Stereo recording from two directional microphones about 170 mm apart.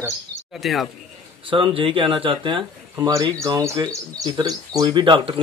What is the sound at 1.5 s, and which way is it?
Speech, 30° right (ahead or behind).